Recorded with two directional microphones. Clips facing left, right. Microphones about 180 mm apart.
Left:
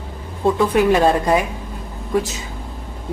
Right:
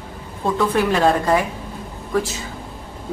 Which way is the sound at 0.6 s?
15° left (ahead or behind).